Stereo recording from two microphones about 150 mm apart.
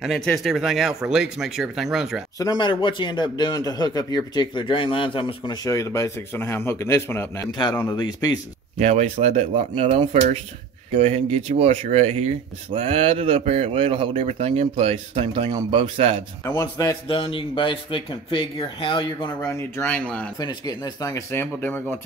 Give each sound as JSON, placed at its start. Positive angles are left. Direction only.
{"t": 0.0, "sound": "speech", "side_deg": 0}
{"t": 2.3, "sound": "speech", "side_deg": 25}
{"t": 7.9, "sound": "speech", "side_deg": 30}
{"t": 8.7, "sound": "speech", "side_deg": -45}
{"t": 16.4, "sound": "speech", "side_deg": 25}
{"t": 17.1, "sound": "speech", "side_deg": 35}
{"t": 19.4, "sound": "speech", "side_deg": 15}
{"t": 20.3, "sound": "speech", "side_deg": 25}